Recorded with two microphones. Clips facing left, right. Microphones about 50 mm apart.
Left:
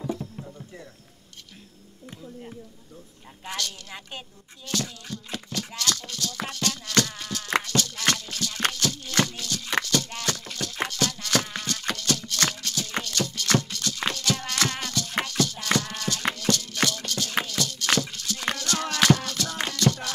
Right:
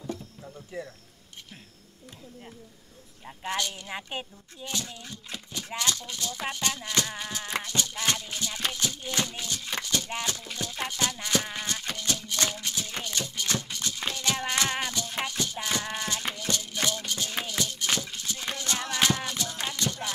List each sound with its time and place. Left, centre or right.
3.3 s speech: centre
7.6 s music: centre
9.3 s a sound: centre
9.8 s music: centre